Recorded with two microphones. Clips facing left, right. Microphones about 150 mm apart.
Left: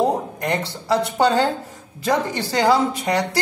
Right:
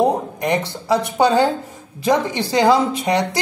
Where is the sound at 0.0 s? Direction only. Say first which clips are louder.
Right 3 dB; 15° right (ahead or behind).